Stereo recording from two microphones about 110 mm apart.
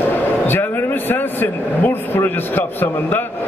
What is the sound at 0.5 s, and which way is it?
Speech, 20° left (ahead or behind).